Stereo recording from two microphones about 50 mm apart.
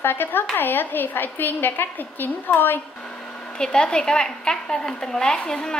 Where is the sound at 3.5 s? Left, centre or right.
Centre.